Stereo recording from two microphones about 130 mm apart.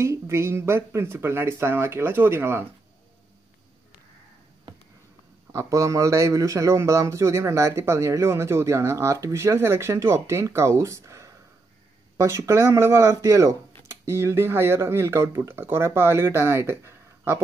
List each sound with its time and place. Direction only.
0.0 s speech: 20° right (ahead or behind)
5.5 s speech: 25° right (ahead or behind)